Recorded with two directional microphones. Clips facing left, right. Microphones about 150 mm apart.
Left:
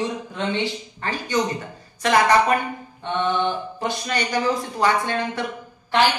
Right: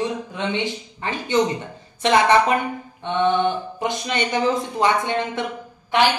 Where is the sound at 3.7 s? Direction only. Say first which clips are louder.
Right 1 dB; 20° right (ahead or behind).